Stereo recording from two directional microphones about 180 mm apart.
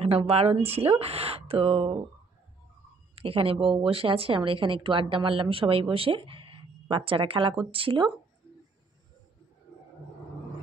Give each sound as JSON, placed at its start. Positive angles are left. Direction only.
{"t": 0.0, "sound": "speech", "side_deg": -35}
{"t": 3.2, "sound": "a woman's voice", "side_deg": -30}